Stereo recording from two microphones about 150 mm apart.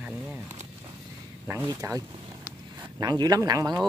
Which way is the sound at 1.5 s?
20° right (ahead or behind).